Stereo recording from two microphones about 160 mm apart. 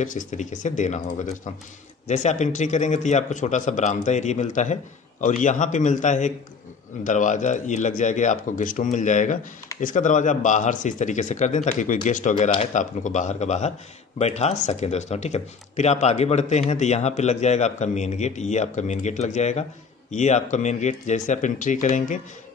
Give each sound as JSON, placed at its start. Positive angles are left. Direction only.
{"t": 0.0, "sound": "a man's voice", "side_deg": 55}